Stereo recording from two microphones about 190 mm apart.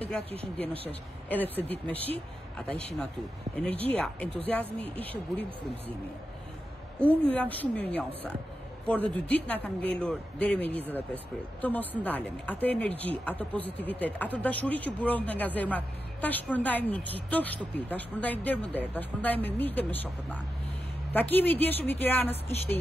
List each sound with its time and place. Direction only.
1.3 s speech: 10° left (ahead or behind)
3.5 s speech: 5° left (ahead or behind)
7.0 s speech: 5° left (ahead or behind)